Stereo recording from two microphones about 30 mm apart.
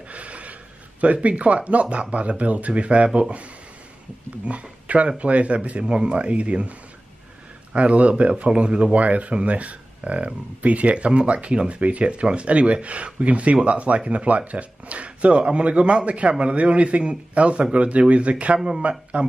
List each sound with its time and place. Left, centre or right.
0.1 s a sound: right
1.0 s a man's voice: right
4.5 s a man's voice: right
5.9 s a man's voice: right
7.7 s a man's voice: right
8.5 s speech: right
8.9 s a man's voice: right